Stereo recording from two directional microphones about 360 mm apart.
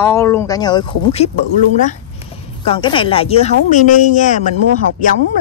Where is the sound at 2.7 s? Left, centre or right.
Centre.